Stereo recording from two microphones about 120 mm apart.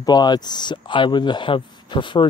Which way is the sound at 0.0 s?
35° left (ahead or behind).